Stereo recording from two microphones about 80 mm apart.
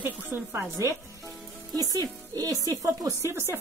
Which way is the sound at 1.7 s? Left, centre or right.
Right.